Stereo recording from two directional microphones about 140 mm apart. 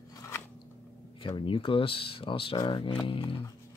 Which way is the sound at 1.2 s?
35° left (ahead or behind).